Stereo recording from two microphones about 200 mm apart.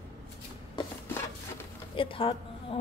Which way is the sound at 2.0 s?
25° left (ahead or behind).